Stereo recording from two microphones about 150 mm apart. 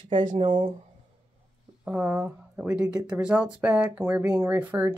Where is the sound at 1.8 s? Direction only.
10° right (ahead or behind).